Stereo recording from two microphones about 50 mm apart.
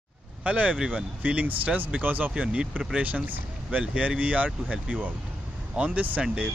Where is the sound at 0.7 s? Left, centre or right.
Centre.